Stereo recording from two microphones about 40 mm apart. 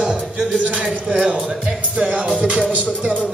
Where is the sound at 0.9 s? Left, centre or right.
Right.